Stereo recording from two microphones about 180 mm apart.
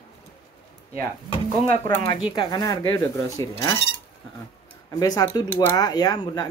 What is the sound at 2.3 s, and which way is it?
Speech, 20° left (ahead or behind).